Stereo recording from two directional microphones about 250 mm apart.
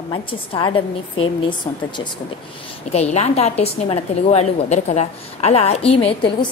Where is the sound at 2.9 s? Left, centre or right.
Left.